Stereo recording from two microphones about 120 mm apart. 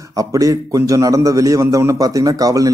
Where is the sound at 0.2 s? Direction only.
30° right (ahead or behind).